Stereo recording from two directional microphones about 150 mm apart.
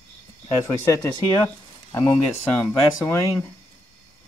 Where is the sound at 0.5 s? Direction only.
20° left (ahead or behind).